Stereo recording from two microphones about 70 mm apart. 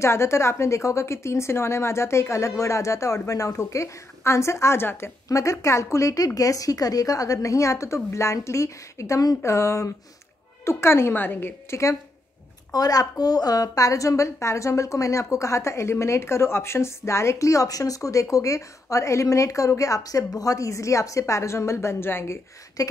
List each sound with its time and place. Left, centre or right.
0.0 s a woman's voice: left
5.3 s a woman's voice: left
12.7 s a woman's voice: left
22.8 s speech: left